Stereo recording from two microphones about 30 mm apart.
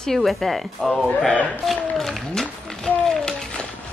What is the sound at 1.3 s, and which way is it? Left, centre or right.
Speech, left.